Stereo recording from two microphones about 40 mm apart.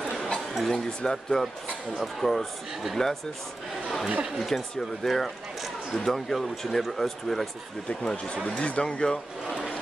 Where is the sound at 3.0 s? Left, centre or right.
Centre.